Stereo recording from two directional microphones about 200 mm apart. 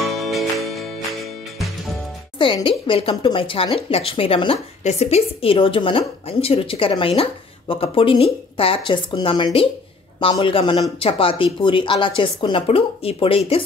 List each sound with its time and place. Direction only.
0.0 s music: centre (ahead or behind)
2.3 s speech: 25° left (ahead or behind)